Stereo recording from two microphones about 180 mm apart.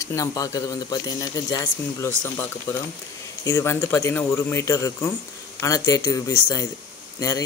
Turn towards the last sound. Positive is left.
turn(degrees=20)  # may be behind; listen again after turning